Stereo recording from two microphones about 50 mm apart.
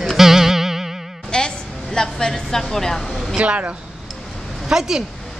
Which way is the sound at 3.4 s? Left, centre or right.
Right.